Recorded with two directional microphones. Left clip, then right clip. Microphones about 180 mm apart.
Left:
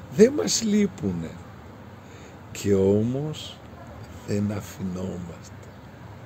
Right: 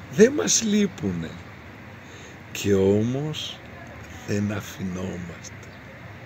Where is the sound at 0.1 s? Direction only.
5° left (ahead or behind).